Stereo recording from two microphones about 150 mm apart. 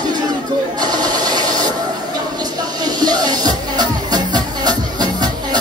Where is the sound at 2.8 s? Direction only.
25° right (ahead or behind).